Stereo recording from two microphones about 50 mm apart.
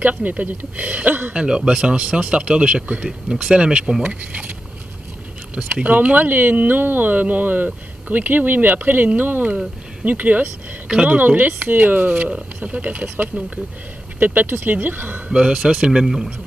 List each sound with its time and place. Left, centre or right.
0.0 s speech: right
1.3 s speech: right
5.5 s speech: right
10.9 s a woman's voice: centre
11.1 s speech: right
12.6 s speech: right
14.2 s speech: right
15.2 s speech: centre